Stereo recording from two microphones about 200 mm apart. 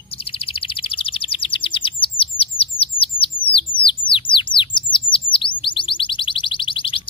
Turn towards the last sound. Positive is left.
turn(degrees=25)  # may be behind; listen again after turning